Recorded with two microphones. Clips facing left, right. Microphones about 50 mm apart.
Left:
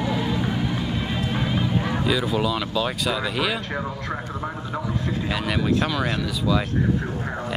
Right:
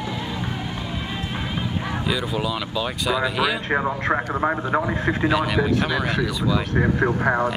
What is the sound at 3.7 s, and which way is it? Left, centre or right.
A man's voice, right.